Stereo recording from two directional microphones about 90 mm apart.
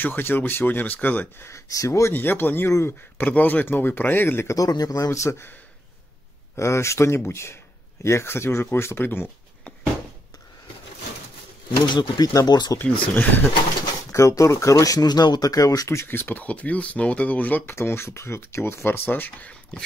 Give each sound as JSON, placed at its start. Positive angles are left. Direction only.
{"t": 0.0, "sound": "speech", "side_deg": 25}
{"t": 1.5, "sound": "speech", "side_deg": 35}
{"t": 4.6, "sound": "a man's voice", "side_deg": 45}
{"t": 6.5, "sound": "speech", "side_deg": 30}
{"t": 11.9, "sound": "a man's voice", "side_deg": 55}
{"t": 13.0, "sound": "speech", "side_deg": 20}
{"t": 14.1, "sound": "speech", "side_deg": 35}
{"t": 19.7, "sound": "a sound", "side_deg": 10}